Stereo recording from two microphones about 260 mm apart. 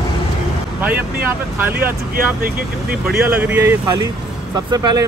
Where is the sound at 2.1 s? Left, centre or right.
Right.